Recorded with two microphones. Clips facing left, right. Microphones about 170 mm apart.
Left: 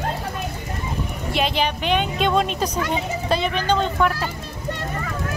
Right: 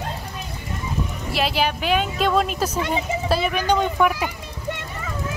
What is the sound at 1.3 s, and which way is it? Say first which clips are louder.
Speech: even; 5° right (ahead or behind).